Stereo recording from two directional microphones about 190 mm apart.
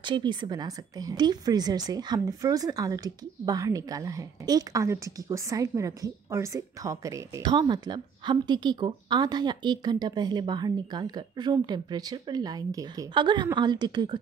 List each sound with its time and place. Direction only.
0.0 s a woman's voice: 25° right (ahead or behind)